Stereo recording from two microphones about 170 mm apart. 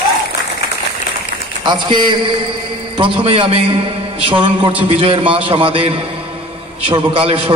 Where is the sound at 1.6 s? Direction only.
25° right (ahead or behind).